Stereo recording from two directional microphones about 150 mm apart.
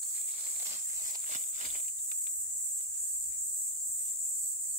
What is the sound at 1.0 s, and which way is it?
Walk, 60° right (ahead or behind).